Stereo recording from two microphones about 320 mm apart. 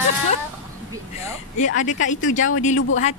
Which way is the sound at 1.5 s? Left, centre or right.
Left.